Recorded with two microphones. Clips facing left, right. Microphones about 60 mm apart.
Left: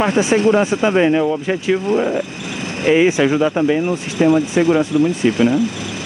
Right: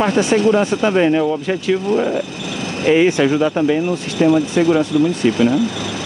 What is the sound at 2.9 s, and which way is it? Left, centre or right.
Speech, centre.